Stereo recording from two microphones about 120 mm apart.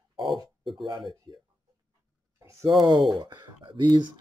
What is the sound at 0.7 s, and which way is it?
Speech, 40° right (ahead or behind).